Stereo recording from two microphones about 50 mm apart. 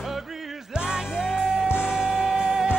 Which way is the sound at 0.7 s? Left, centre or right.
Centre.